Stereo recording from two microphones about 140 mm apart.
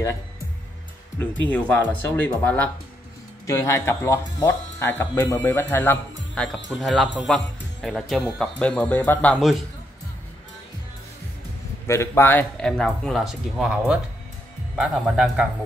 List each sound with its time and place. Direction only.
1.5 s a man's voice: 15° left (ahead or behind)
11.9 s a man's voice: 20° left (ahead or behind); by 15.4 s 5° right (ahead or behind)